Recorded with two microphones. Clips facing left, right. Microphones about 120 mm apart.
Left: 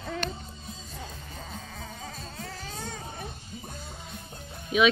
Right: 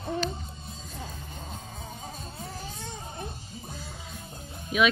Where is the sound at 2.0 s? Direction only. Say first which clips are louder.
Even; 90° left.